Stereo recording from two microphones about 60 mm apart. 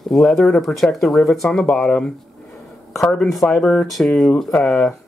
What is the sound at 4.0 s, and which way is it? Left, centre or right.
Speech, centre.